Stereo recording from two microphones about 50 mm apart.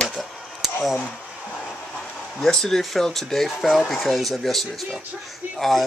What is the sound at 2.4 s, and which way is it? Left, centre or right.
Speech, centre.